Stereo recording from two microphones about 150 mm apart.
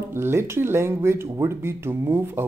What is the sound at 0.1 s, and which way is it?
Speech, 15° right (ahead or behind).